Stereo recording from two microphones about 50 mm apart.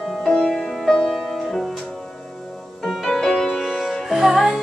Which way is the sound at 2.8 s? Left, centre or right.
Centre.